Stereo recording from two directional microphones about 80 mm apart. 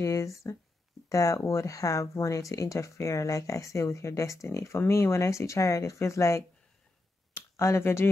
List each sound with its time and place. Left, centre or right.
0.0 s speech: left